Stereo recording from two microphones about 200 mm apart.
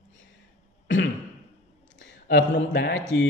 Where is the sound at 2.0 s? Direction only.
55° left (ahead or behind).